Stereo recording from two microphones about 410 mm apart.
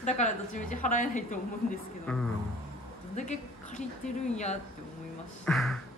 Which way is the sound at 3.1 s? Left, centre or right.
Centre.